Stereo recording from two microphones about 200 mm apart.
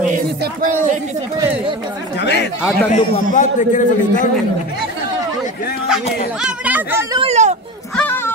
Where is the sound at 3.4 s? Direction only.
40° left (ahead or behind).